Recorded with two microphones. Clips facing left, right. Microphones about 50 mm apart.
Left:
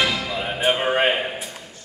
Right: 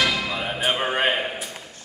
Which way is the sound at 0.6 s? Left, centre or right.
Centre.